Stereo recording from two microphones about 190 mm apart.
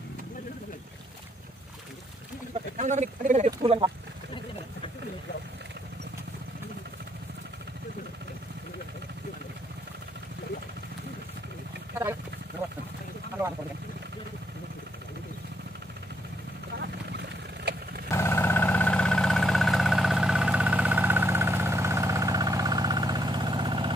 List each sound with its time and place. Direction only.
2.8 s speech: 40° right (ahead or behind)
3.6 s speech: 30° right (ahead or behind)
16.8 s vehicle: 60° right (ahead or behind)
18.1 s vehicle: 15° left (ahead or behind); by 23.9 s 25° right (ahead or behind)